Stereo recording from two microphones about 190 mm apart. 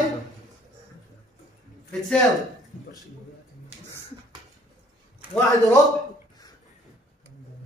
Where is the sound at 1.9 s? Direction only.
5° left (ahead or behind).